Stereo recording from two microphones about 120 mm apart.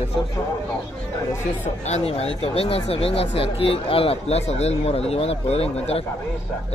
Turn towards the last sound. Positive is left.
turn(degrees=60)  # may be behind; listen again after turning